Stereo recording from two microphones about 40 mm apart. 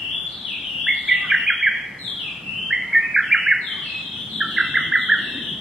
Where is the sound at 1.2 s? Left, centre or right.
Centre.